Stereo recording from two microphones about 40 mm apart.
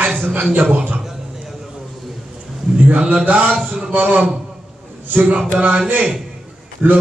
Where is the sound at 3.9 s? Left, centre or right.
Right.